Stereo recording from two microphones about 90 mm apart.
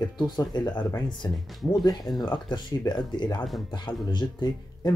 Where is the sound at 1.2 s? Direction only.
45° left (ahead or behind).